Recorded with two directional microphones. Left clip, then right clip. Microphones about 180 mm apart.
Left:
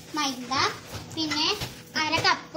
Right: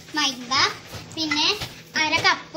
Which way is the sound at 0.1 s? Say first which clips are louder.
Right 5 dB; 20° right (ahead or behind).